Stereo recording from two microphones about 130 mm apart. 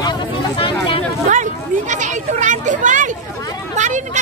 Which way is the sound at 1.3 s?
70° right (ahead or behind).